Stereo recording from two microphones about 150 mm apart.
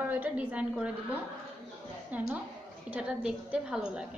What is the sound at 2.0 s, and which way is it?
A woman's voice, 10° right (ahead or behind).